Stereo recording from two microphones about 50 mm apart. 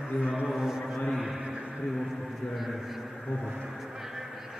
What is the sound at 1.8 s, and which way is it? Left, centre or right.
A man's voice, centre.